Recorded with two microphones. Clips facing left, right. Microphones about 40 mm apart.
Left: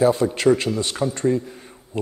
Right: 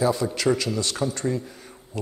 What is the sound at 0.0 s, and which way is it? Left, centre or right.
Speech, left.